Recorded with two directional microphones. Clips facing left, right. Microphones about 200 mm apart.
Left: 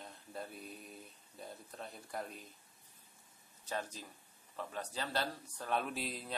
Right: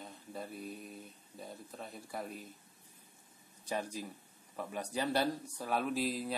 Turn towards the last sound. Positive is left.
turn(degrees=0)  # may be behind; listen again after turning